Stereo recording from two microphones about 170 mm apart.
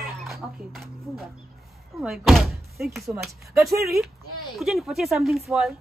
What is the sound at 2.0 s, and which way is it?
Speech, centre (ahead or behind).